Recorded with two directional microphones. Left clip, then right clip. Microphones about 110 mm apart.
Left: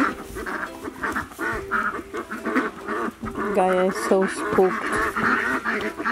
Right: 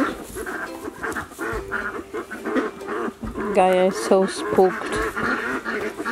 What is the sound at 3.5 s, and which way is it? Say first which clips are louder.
Speech: right 3 dB; 15° right (ahead or behind).